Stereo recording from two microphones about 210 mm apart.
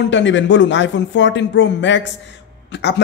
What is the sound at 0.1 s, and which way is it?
Speech, 60° left (ahead or behind).